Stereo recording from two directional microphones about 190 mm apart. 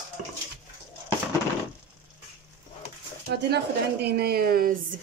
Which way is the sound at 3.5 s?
60° right (ahead or behind).